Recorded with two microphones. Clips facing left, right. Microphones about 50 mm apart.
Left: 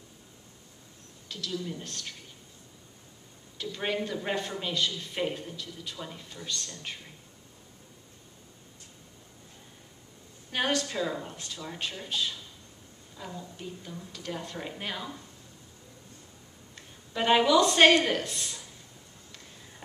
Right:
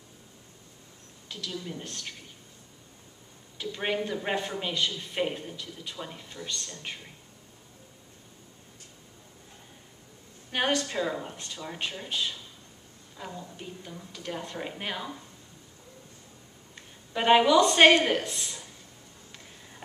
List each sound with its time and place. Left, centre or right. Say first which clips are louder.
1.3 s a man's voice: left 2 dB; centre
3.5 s a man's voice: right 1 dB; centre
10.5 s a man's voice: right 1 dB; centre
16.7 s a woman's voice: right 1 dB; centre